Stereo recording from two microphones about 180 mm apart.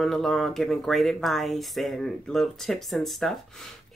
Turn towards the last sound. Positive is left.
turn(degrees=0)  # may be behind; listen again after turning